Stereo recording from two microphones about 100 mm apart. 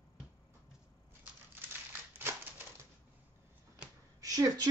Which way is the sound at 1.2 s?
20° right (ahead or behind).